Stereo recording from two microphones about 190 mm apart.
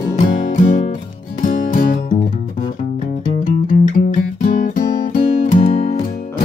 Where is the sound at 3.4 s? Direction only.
45° left (ahead or behind).